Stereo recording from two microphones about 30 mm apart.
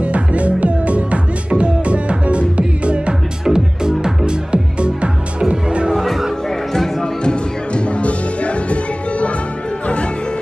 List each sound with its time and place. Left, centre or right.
0.0 s music: right
3.4 s music: right
4.3 s music: right
5.9 s music: centre
6.7 s music: centre
7.2 s music: left